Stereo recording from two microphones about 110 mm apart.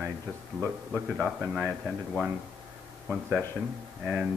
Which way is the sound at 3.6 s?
10° right (ahead or behind).